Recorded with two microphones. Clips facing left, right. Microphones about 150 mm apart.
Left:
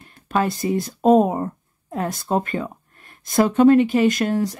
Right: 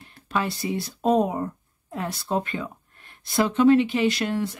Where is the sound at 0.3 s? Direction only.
45° left (ahead or behind).